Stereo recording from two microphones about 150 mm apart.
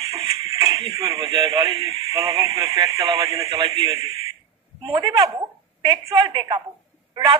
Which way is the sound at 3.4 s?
35° right (ahead or behind).